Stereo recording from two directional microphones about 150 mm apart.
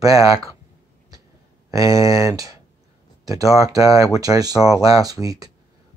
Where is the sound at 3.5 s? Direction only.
20° right (ahead or behind).